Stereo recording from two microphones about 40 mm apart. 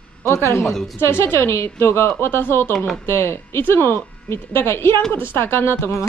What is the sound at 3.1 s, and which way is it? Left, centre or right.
Speech, left.